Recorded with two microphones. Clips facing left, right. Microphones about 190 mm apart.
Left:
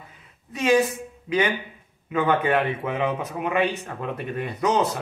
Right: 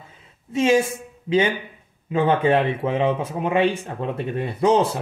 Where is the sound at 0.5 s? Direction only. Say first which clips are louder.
Right 2 dB; 25° right (ahead or behind).